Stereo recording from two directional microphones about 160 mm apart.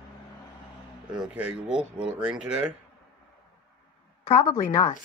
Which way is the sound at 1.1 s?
5° right (ahead or behind).